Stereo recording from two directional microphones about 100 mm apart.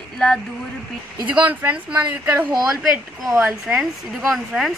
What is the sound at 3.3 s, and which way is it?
Speech, 10° right (ahead or behind).